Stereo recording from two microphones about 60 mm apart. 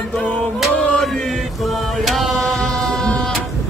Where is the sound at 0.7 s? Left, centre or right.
Left.